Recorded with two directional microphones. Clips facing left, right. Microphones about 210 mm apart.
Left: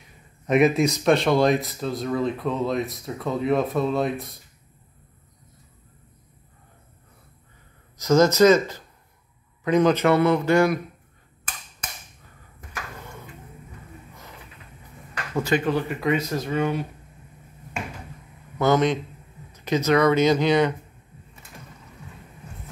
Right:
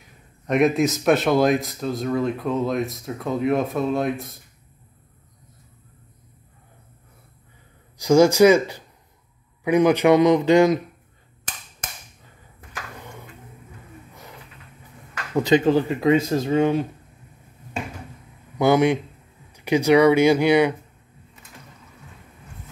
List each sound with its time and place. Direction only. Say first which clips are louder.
0.5 s speech: even; centre (ahead or behind)
8.0 s speech: right 2 dB; 15° right (ahead or behind)
15.3 s speech: right 5 dB; 20° right (ahead or behind)
18.6 s speech: right 3 dB; 10° right (ahead or behind)